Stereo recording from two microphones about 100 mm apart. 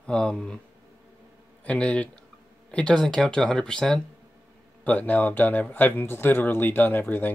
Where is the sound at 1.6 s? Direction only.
10° left (ahead or behind).